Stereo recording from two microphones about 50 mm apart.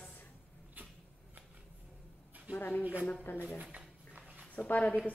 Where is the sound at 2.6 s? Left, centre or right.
Left.